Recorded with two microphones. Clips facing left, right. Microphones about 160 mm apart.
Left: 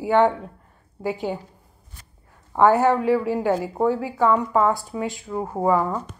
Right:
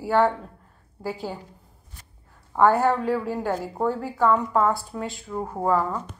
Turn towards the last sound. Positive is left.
turn(degrees=15)  # may be behind; listen again after turning